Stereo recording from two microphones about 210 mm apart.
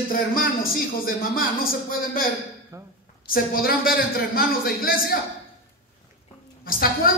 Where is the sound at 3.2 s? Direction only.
45° left (ahead or behind).